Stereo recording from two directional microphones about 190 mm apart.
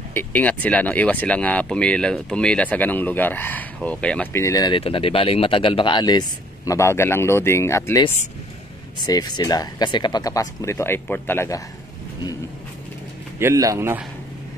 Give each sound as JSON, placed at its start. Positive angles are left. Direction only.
{"t": 0.1, "sound": "speech", "side_deg": 10}
{"t": 9.0, "sound": "speech", "side_deg": 20}
{"t": 13.4, "sound": "speech", "side_deg": -15}